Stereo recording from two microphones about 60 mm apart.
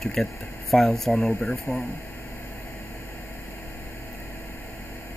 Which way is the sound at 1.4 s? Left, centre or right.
Left.